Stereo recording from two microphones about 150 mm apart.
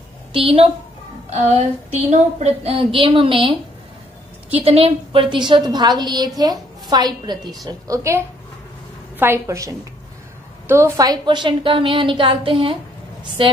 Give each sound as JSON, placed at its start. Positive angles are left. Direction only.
{"t": 0.3, "sound": "a woman's voice", "side_deg": -35}
{"t": 2.0, "sound": "a woman's voice", "side_deg": -45}
{"t": 9.2, "sound": "a woman's voice", "side_deg": -20}